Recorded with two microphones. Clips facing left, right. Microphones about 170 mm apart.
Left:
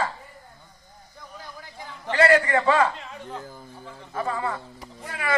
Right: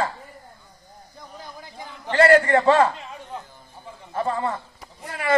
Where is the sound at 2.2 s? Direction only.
35° right (ahead or behind).